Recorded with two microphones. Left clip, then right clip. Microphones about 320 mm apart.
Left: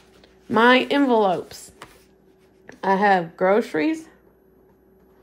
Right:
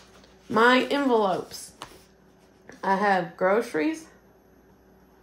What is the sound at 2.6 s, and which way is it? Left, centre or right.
Speech, left.